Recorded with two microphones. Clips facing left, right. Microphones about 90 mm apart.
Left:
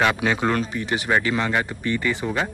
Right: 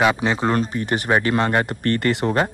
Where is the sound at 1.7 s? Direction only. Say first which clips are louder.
Right 4 dB; 65° right (ahead or behind).